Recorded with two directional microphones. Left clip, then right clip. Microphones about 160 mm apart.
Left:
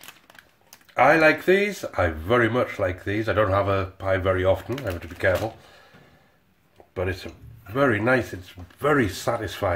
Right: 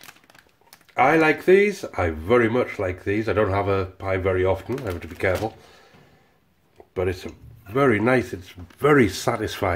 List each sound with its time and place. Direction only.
0.9 s speech: 20° right (ahead or behind)
4.8 s speech: 30° right (ahead or behind)
6.9 s speech: 30° right (ahead or behind)